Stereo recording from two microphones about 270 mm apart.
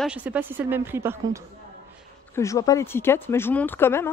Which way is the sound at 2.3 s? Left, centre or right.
Centre.